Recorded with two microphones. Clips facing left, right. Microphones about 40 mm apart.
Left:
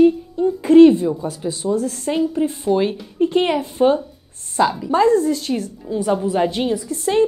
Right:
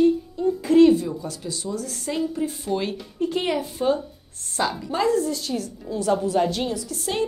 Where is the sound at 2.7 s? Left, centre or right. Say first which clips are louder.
Left 9 dB; left.